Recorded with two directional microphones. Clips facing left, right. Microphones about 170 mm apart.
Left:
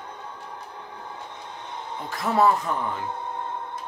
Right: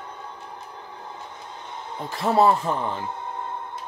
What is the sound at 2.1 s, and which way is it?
Speech, 30° right (ahead or behind).